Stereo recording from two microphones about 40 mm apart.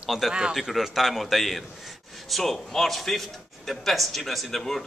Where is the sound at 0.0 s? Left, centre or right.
Centre.